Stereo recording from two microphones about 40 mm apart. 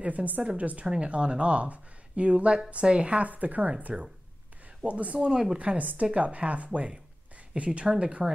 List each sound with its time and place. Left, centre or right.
0.0 s a woman's voice: right
0.8 s a woman's voice: right
4.8 s a woman's voice: right
5.3 s speech: centre
5.6 s a woman's voice: right